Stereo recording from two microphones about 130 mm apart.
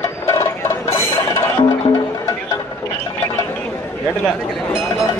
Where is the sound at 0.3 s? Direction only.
20° left (ahead or behind).